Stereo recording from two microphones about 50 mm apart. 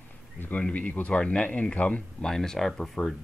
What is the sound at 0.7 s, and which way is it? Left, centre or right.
Speech, left.